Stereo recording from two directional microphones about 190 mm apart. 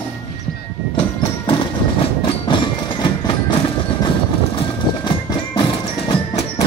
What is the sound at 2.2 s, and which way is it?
Music, 25° left (ahead or behind).